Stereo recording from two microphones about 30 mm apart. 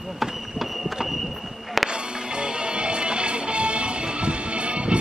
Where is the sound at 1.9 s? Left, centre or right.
Right.